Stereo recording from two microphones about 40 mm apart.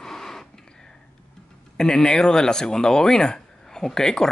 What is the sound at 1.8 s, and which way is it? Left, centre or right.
Speech, centre.